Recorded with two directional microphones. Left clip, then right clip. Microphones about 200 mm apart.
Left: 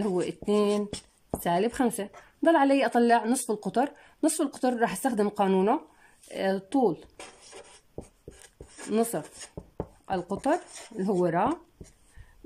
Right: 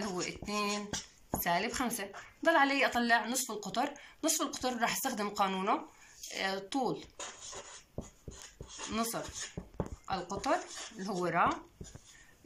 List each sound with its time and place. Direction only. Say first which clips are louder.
0.1 s music: left 10 dB; 45° left (ahead or behind)
1.4 s a woman's voice: left 7 dB; 45° left (ahead or behind)
8.9 s a woman's voice: left 9 dB; 45° left (ahead or behind)